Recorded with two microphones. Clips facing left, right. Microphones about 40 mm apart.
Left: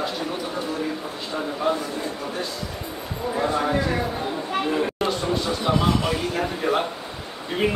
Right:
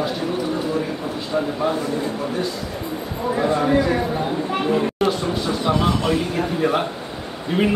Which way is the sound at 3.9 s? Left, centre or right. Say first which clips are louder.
Right 4 dB; centre.